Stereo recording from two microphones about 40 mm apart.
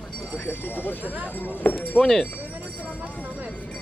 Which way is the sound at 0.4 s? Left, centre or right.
Left.